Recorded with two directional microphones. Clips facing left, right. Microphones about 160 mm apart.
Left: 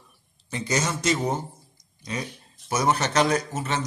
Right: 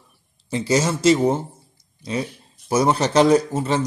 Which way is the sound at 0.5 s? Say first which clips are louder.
Right 7 dB; 30° right (ahead or behind).